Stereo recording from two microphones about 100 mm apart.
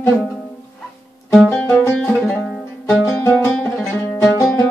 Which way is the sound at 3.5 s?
5° left (ahead or behind).